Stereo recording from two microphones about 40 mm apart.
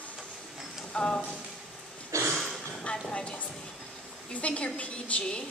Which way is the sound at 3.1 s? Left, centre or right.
Left.